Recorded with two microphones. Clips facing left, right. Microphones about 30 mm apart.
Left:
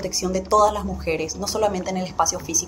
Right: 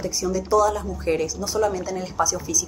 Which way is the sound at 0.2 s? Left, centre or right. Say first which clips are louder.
Left 2 dB; left.